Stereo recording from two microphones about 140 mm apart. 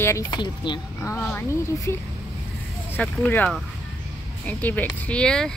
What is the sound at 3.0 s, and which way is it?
Speech, 10° left (ahead or behind).